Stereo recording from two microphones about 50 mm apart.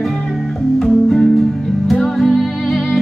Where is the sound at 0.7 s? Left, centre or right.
Centre.